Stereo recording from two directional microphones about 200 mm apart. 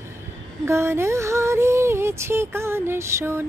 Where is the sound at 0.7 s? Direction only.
15° right (ahead or behind).